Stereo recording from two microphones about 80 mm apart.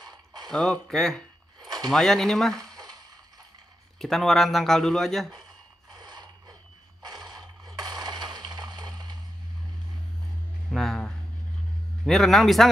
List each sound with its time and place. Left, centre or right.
0.5 s a man's voice: centre
4.0 s a man's voice: centre
5.9 s mechanisms: right
7.0 s a sound: right
10.7 s a sound: centre
12.1 s a man's voice: centre